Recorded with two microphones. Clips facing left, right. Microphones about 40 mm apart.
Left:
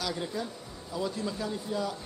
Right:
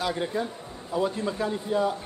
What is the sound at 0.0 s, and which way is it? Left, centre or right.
A man's voice, right.